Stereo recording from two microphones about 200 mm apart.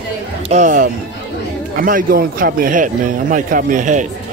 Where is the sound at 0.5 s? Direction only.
40° right (ahead or behind).